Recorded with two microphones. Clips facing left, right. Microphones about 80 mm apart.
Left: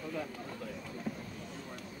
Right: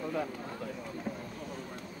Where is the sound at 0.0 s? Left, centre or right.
Right.